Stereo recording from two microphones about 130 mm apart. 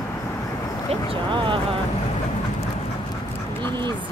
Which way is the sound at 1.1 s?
40° right (ahead or behind).